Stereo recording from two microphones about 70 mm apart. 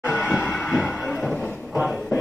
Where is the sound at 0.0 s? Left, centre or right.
Centre.